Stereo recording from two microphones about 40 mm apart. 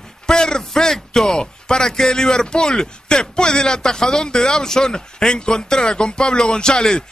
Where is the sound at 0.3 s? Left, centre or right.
Centre.